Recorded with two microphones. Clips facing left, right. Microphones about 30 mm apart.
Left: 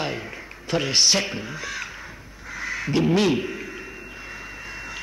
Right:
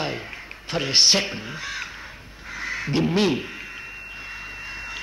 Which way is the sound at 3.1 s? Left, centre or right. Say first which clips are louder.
Left 1 dB; centre.